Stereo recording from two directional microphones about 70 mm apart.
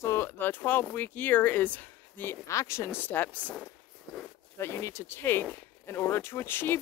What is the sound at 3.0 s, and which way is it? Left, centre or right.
Speech, left.